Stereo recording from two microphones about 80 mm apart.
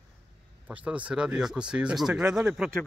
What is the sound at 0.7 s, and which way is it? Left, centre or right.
Speech, centre.